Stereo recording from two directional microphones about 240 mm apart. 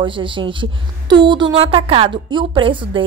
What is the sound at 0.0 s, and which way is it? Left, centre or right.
Speech, right.